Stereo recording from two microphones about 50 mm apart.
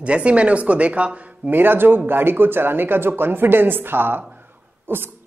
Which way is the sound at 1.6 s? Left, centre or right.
Right.